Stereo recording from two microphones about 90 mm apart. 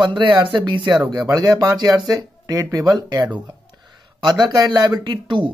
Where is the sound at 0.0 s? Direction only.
60° right (ahead or behind).